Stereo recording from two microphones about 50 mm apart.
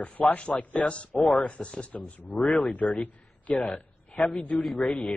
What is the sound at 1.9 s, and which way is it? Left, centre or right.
Speech, left.